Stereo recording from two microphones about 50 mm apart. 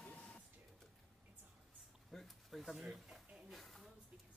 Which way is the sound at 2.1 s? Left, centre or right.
Centre.